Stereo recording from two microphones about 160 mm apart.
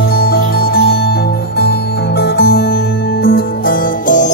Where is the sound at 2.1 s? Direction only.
90° left.